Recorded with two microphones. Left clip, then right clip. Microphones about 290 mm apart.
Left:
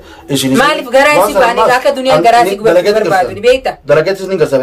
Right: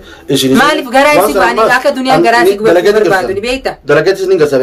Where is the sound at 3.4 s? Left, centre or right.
Centre.